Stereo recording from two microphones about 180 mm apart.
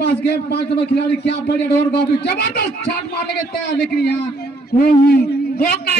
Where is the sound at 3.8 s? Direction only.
65° left (ahead or behind).